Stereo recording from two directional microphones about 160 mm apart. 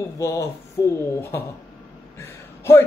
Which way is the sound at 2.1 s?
15° left (ahead or behind).